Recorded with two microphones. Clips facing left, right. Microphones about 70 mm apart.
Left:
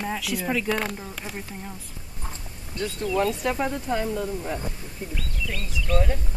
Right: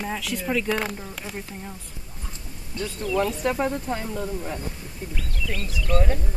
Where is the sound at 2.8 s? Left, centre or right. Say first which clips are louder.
Even; left.